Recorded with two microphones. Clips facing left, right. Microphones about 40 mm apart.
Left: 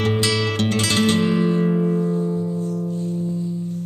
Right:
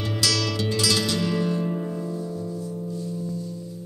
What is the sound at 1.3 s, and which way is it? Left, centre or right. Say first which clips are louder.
Music: left 6 dB; left.